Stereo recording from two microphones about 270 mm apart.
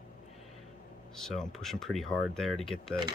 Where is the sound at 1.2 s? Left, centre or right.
Centre.